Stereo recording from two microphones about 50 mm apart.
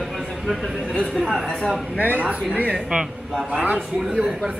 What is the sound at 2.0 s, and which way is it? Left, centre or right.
Speech, left.